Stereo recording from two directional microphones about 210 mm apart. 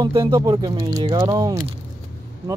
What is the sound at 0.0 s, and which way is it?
Speech, 15° right (ahead or behind).